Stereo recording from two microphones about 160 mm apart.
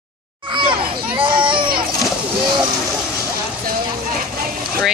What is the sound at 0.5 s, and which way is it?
Children playing, 30° right (ahead or behind).